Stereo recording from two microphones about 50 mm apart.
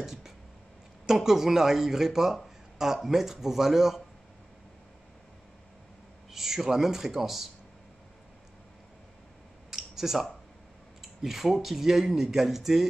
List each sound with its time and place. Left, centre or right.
0.0 s speech: centre
2.3 s a sound: centre
3.1 s speech: centre
6.3 s speech: centre
9.7 s a sound: centre
11.0 s speech: centre